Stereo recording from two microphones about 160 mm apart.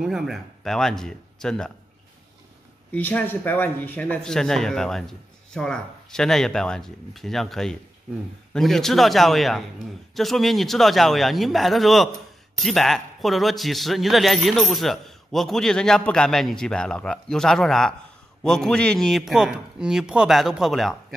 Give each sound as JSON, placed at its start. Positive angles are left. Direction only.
{"t": 0.0, "sound": "a man's voice", "side_deg": 0}
{"t": 2.9, "sound": "a man's voice", "side_deg": 10}